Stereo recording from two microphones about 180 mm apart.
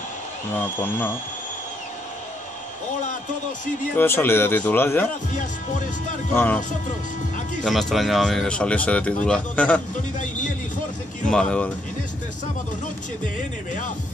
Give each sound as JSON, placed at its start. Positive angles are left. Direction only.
{"t": 0.6, "sound": "speech", "side_deg": 10}
{"t": 3.9, "sound": "speech", "side_deg": 10}
{"t": 5.3, "sound": "music", "side_deg": 45}
{"t": 6.3, "sound": "speech", "side_deg": 10}
{"t": 7.6, "sound": "speech", "side_deg": 0}
{"t": 11.2, "sound": "speech", "side_deg": 5}